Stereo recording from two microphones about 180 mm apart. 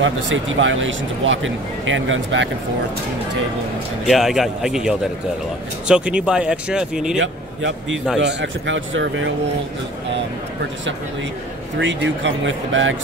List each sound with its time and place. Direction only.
0.0 s speech: 90° right
4.1 s speech: centre (ahead or behind)
8.2 s speech: 75° right (ahead or behind)
11.8 s speech: 85° right